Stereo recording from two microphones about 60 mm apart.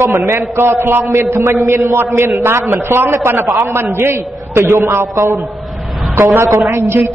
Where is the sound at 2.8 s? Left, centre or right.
Right.